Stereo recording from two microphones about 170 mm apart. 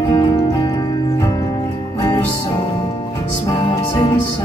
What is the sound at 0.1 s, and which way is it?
Music, 25° left (ahead or behind).